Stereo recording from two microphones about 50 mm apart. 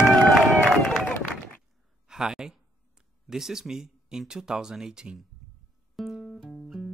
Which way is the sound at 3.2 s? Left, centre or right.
Centre.